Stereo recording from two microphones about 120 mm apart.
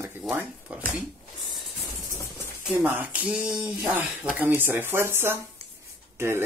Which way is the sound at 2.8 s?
15° right (ahead or behind).